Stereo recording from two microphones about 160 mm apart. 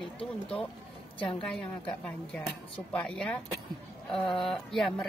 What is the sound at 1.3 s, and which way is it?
Speech, 5° left (ahead or behind).